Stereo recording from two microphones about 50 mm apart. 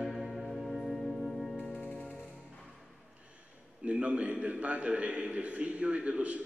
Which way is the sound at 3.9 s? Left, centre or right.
Right.